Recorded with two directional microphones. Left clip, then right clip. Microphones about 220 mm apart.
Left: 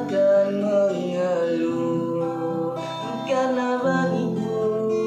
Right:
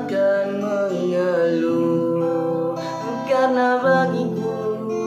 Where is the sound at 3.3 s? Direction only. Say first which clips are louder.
Right 5 dB; 25° right (ahead or behind).